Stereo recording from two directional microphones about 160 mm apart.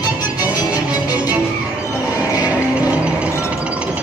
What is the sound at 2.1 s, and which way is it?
Music, 20° left (ahead or behind).